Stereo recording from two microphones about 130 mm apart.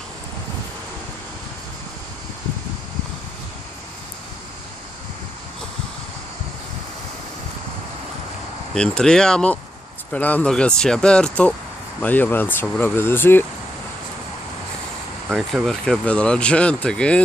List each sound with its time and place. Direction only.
8.7 s speech: 5° left (ahead or behind)
15.2 s speech: centre (ahead or behind)